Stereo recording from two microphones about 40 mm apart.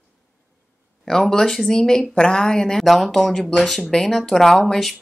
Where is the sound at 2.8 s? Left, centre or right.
Centre.